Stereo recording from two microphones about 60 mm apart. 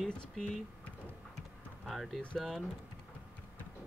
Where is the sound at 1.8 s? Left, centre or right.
Centre.